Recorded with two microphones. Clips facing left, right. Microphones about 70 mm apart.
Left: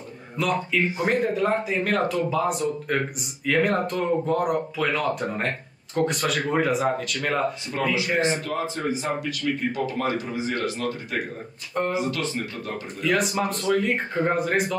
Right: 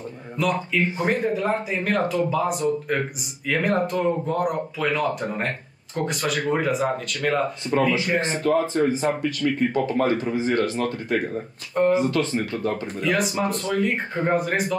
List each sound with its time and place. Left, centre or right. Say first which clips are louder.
0.4 s speech: right 1 dB; centre
8.5 s speech: right 7 dB; right
13.0 s speech: even; centre